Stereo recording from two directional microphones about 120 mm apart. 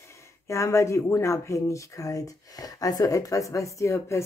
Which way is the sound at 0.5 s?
25° left (ahead or behind).